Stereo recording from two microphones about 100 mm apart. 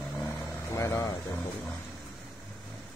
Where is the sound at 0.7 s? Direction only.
30° left (ahead or behind).